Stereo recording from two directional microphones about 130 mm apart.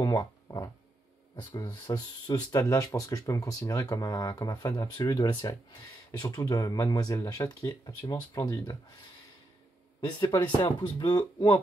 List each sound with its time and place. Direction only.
0.0 s didgeridoo: 30° left (ahead or behind)
1.4 s speech: 35° left (ahead or behind)
9.9 s speech: 35° left (ahead or behind)